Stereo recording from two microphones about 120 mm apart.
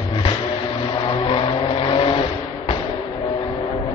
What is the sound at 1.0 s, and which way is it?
Vehicle, 50° left (ahead or behind).